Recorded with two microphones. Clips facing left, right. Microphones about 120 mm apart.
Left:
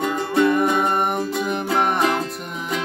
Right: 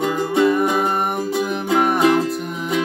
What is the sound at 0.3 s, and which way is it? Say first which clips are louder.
Music: even; 5° right (ahead or behind).